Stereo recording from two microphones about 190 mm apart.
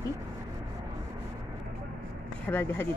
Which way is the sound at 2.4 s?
10° left (ahead or behind).